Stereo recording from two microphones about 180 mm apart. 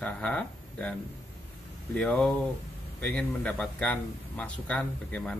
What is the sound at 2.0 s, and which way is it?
A man's voice, 5° left (ahead or behind).